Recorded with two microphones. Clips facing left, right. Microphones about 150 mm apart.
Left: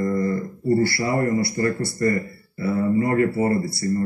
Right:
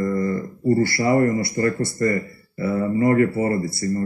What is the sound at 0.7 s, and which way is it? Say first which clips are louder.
Speech: right 2 dB; 20° right (ahead or behind).